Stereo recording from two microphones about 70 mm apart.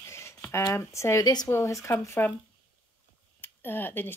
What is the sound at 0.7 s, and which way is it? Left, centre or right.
Speech, left.